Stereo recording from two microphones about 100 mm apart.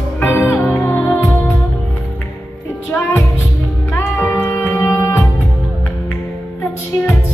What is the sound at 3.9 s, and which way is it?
Music, 25° left (ahead or behind).